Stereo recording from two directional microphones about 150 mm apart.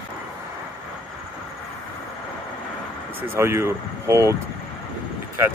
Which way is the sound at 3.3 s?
15° right (ahead or behind).